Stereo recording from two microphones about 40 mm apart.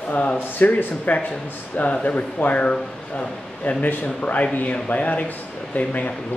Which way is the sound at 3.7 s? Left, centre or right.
Left.